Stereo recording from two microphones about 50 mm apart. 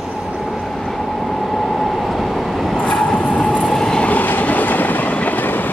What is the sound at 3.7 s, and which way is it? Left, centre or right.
Train, centre.